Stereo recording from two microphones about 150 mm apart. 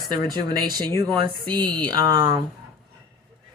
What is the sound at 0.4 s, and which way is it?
Speech, 30° right (ahead or behind).